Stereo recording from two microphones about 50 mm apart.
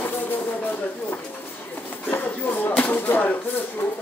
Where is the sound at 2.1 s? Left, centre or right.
Left.